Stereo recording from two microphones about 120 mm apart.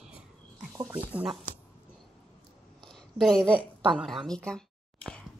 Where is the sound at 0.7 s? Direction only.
20° right (ahead or behind).